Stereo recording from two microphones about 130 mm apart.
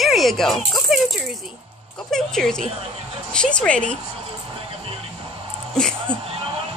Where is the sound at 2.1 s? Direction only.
5° left (ahead or behind).